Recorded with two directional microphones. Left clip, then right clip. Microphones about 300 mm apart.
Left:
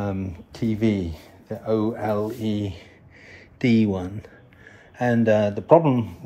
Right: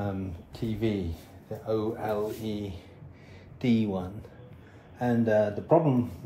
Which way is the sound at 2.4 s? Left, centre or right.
Left.